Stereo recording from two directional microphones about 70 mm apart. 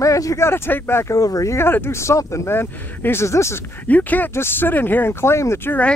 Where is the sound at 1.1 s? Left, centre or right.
Left.